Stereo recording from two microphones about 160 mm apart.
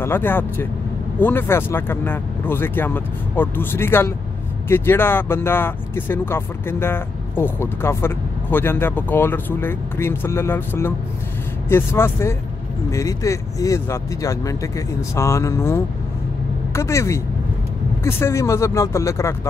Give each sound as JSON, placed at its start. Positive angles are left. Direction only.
{"t": 0.0, "sound": "speech", "side_deg": 15}